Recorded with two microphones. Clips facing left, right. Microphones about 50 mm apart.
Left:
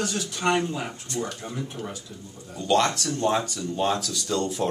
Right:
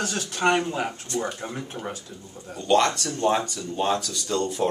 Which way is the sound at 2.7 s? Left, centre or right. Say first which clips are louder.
Right 1 dB; centre.